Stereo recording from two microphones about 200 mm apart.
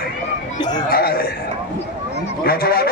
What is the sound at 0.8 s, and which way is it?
Chuckle, 50° left (ahead or behind).